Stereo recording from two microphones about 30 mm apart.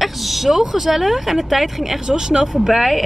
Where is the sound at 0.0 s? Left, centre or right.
Centre.